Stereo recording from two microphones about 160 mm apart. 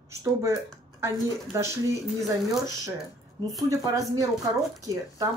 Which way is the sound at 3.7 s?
20° right (ahead or behind).